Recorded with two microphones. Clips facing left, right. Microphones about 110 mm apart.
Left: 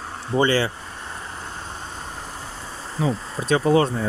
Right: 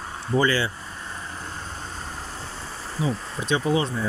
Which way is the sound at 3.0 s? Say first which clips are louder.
Left 4 dB; 35° left (ahead or behind).